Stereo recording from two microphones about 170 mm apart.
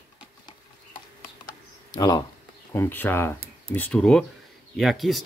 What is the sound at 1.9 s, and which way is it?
Speech, 20° left (ahead or behind).